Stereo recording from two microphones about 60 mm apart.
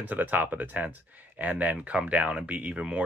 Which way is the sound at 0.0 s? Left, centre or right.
Right.